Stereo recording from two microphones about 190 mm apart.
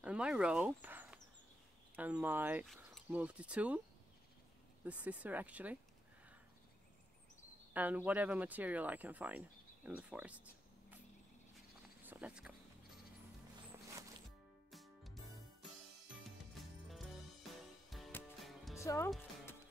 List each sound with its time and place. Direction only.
0.0 s speech: 5° right (ahead or behind)
4.8 s speech: 5° right (ahead or behind)
7.7 s speech: 10° right (ahead or behind)
12.0 s a sound: 10° right (ahead or behind)
14.7 s music: centre (ahead or behind)
16.3 s music: centre (ahead or behind)
18.8 s speech: 15° left (ahead or behind)